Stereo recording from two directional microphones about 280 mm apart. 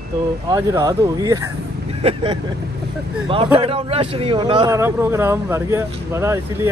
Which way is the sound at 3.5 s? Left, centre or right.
Centre.